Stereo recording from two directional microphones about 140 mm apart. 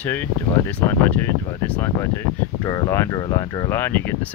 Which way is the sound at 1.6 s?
10° left (ahead or behind).